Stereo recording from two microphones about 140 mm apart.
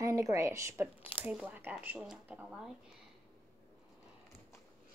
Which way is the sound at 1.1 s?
10° right (ahead or behind).